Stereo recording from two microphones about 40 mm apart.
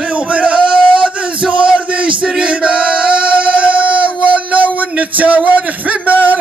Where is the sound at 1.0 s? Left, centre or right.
Right.